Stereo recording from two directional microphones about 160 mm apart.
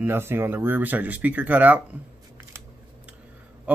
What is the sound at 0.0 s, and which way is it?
Speech, 15° right (ahead or behind).